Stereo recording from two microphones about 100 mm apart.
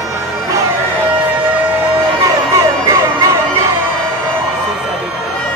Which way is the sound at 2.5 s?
30° right (ahead or behind).